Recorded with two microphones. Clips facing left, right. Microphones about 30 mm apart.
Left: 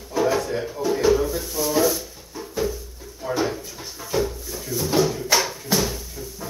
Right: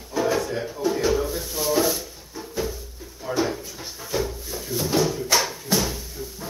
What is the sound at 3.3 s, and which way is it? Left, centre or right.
Drawer open or close, centre.